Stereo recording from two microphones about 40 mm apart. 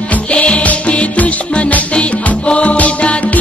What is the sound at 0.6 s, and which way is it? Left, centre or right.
Music, left.